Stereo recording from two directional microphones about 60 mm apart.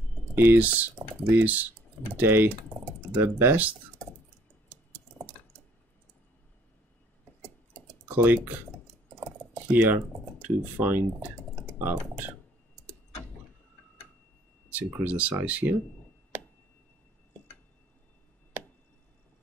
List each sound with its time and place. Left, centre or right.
0.3 s speech: right
8.1 s speech: right
9.5 s speech: right
15.0 s speech: right